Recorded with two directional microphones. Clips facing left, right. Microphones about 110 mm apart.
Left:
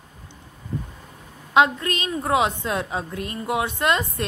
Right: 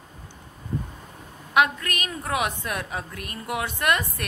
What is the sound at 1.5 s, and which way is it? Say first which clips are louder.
A woman's voice: left 3 dB; 25° left (ahead or behind).